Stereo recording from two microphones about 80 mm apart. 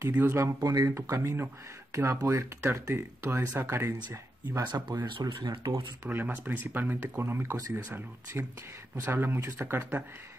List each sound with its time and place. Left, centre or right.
0.2 s speech: right
0.6 s speech: right
2.6 s speech: right
4.6 s speech: right
6.0 s speech: right